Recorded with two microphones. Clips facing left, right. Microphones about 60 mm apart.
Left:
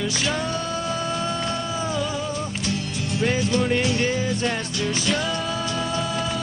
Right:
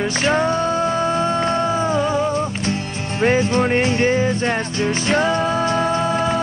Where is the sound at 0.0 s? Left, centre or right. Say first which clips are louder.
Right 7 dB; right.